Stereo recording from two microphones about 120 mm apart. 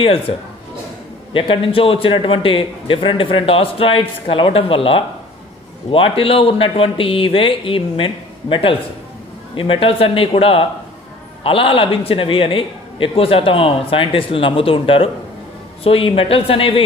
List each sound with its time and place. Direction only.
1.3 s a man's voice: 45° left (ahead or behind)